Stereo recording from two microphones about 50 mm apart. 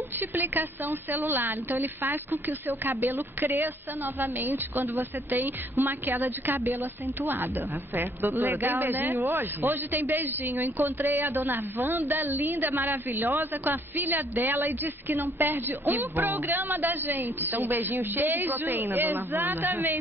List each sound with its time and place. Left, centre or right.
0.3 s a man's voice: right